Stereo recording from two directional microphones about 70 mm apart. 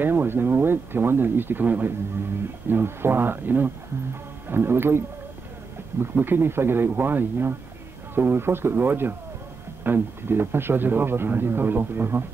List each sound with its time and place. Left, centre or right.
0.0 s speech: right